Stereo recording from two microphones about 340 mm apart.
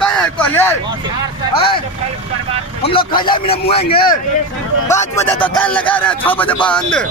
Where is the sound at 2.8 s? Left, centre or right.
Centre.